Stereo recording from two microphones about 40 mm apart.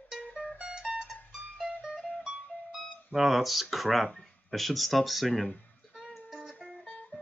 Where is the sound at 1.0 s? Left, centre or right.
Centre.